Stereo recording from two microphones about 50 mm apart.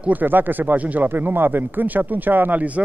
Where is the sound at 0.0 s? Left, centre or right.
Right.